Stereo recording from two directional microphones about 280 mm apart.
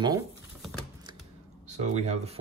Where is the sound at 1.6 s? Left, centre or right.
Right.